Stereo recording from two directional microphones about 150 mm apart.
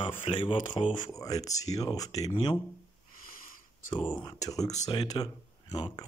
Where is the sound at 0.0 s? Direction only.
35° left (ahead or behind).